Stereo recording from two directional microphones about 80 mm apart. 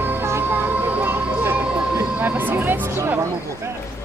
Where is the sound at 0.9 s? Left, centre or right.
Right.